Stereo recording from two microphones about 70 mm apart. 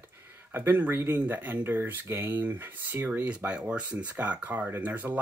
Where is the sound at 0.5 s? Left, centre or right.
Right.